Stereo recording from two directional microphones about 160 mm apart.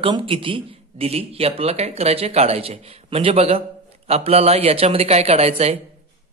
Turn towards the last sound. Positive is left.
turn(degrees=-40)  # may be behind; listen again after turning